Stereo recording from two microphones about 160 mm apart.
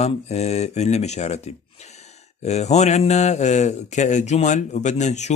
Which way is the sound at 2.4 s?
45° left (ahead or behind).